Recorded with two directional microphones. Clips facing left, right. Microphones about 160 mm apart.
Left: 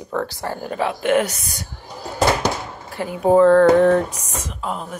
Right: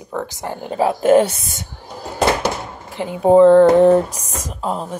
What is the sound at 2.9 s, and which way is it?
Speech, 20° right (ahead or behind).